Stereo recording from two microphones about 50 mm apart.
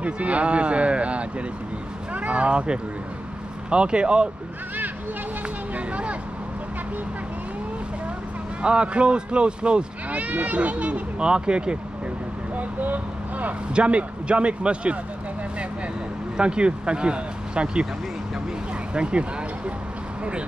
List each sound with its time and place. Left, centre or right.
0.0 s speech: right
5.8 s vehicle: right
8.6 s speech: right
12.5 s speech: right
13.7 s speech: right
16.3 s speech: centre
18.9 s speech: right